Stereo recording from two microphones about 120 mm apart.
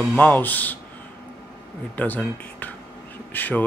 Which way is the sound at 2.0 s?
15° left (ahead or behind).